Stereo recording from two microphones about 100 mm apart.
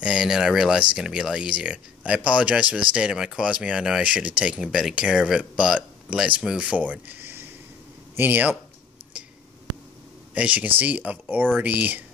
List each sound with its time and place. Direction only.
0.0 s speech: 10° right (ahead or behind)
10.3 s speech: 10° right (ahead or behind)